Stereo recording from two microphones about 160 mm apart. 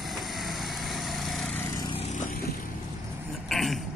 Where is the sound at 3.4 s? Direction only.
Centre (ahead or behind).